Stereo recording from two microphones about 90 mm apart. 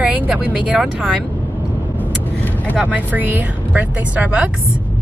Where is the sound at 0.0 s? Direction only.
15° right (ahead or behind).